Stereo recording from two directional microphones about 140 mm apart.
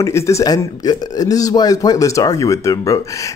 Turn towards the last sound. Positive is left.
turn(degrees=25)  # may be behind; listen again after turning